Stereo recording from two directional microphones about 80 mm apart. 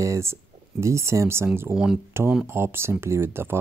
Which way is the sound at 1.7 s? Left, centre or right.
Centre.